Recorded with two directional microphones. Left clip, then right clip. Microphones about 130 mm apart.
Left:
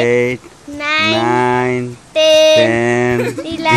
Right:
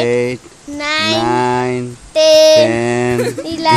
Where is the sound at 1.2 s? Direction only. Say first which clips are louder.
Left 1 dB; 5° right (ahead or behind).